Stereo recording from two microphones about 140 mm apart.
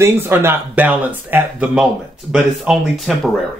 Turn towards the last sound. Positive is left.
turn(degrees=0)  # may be behind; listen again after turning